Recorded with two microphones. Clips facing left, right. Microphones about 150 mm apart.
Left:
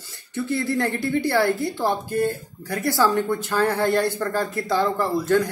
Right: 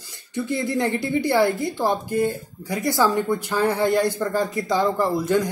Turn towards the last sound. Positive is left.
turn(degrees=-15)  # may be behind; listen again after turning